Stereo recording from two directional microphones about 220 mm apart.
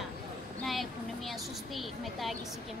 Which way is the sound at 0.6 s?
Centre (ahead or behind).